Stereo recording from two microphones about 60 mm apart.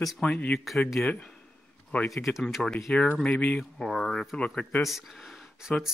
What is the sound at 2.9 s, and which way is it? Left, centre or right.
Speech, left.